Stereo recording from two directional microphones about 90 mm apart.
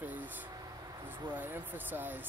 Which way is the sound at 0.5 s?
45° right (ahead or behind).